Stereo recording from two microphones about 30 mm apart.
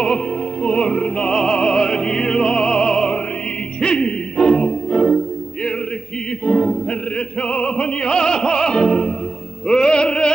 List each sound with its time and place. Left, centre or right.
0.0 s music: left; by 5.2 s centre
6.4 s a capella: left
6.9 s opera: left
9.7 s music: left